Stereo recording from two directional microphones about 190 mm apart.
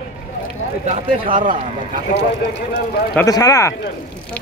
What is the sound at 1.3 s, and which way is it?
Speech, 45° right (ahead or behind).